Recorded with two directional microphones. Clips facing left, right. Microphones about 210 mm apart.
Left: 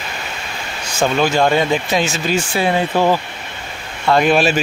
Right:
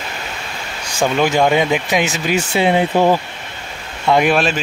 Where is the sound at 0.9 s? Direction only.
15° right (ahead or behind).